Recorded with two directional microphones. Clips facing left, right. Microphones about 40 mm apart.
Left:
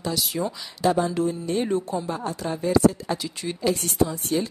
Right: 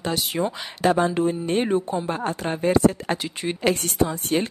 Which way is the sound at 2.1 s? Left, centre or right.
Right.